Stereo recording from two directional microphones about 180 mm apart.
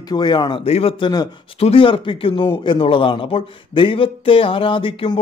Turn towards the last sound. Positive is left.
turn(degrees=30)  # may be behind; listen again after turning